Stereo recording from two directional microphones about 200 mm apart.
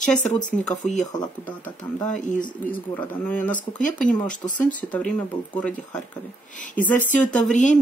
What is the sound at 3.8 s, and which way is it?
Speech, 40° left (ahead or behind).